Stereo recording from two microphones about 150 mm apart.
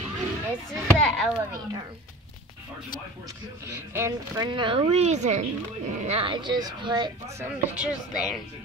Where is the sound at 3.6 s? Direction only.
20° right (ahead or behind).